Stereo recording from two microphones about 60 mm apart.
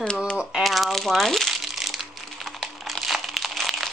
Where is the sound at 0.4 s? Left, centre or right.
Centre.